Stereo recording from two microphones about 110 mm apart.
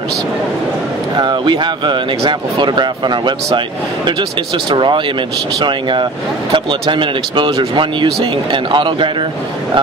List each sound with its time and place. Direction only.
1.1 s speech: 45° right (ahead or behind)